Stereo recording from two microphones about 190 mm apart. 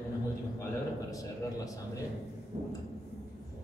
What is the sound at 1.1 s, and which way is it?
Speech, 20° left (ahead or behind).